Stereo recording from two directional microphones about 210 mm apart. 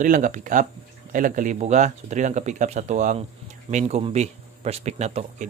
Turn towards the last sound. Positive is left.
turn(degrees=-30)  # may be behind; listen again after turning